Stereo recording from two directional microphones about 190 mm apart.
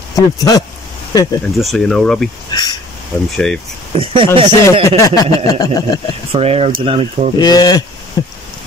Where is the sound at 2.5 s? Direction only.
20° left (ahead or behind).